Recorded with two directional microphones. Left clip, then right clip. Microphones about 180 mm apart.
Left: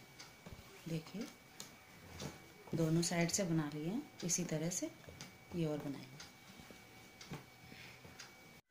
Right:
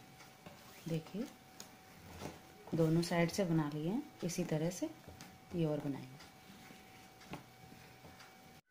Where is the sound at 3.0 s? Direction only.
50° right (ahead or behind).